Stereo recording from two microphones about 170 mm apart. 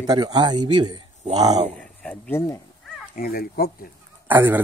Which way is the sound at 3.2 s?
60° left (ahead or behind).